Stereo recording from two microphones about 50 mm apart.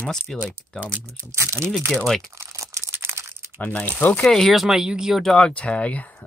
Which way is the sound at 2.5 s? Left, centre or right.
Right.